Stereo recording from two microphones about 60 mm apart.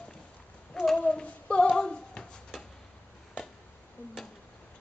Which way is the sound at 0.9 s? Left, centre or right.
Centre.